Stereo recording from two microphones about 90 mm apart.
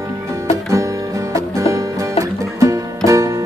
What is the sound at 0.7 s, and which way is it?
Music, 35° right (ahead or behind).